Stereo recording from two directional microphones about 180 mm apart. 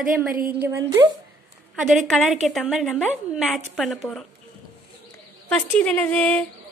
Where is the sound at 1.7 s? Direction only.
5° right (ahead or behind).